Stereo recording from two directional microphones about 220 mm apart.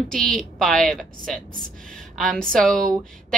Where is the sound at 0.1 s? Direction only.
Centre (ahead or behind).